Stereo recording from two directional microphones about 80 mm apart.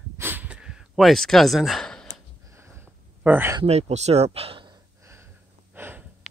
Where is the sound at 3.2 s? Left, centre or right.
Right.